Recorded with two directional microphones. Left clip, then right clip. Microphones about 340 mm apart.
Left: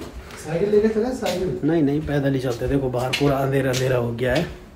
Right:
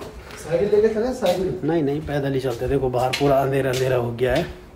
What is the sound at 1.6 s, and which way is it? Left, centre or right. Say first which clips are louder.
Speech: left 1 dB; centre.